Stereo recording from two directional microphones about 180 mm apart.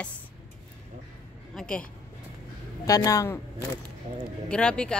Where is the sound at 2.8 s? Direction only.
20° left (ahead or behind).